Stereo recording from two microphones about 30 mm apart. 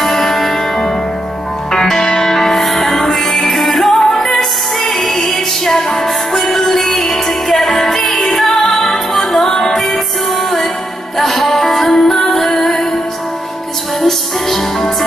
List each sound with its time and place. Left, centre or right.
0.0 s music: centre
1.7 s music: centre
4.0 s music: centre
11.1 s music: centre
11.9 s music: centre
14.0 s music: centre